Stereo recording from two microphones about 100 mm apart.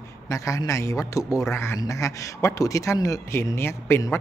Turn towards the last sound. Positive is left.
turn(degrees=25)  # may be behind; listen again after turning